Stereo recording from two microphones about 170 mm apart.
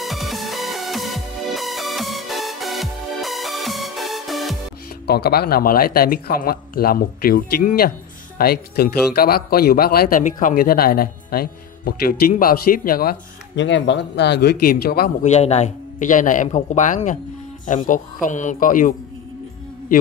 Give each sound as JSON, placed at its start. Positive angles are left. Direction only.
{"t": 0.0, "sound": "music", "side_deg": 0}
{"t": 5.0, "sound": "speech", "side_deg": 70}
{"t": 15.2, "sound": "a man's voice", "side_deg": 40}